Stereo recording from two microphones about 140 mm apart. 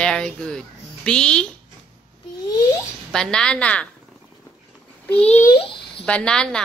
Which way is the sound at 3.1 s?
5° left (ahead or behind).